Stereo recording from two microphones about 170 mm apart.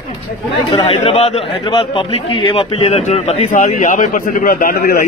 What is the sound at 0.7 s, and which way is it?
A man's voice, 35° left (ahead or behind).